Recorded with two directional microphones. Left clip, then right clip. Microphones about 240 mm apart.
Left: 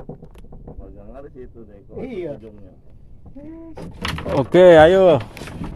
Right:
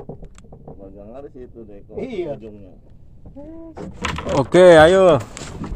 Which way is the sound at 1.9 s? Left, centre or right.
Right.